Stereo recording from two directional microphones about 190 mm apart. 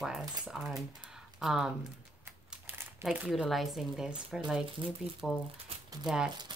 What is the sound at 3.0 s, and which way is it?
Speech, 5° right (ahead or behind).